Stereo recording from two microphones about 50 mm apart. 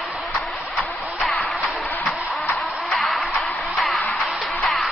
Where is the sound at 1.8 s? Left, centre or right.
Left.